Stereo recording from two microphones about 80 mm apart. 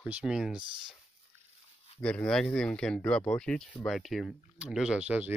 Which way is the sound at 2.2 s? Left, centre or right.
Centre.